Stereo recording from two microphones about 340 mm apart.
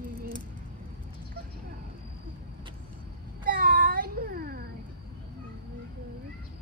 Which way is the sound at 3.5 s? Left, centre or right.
Right.